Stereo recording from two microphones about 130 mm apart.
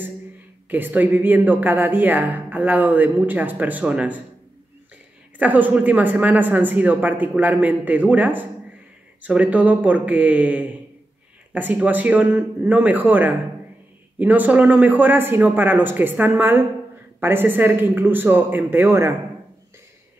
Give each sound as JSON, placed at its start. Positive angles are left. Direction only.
{"t": 0.7, "sound": "speech", "side_deg": -15}
{"t": 5.4, "sound": "speech", "side_deg": -10}